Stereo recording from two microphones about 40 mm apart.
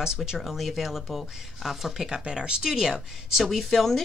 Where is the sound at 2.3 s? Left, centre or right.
Centre.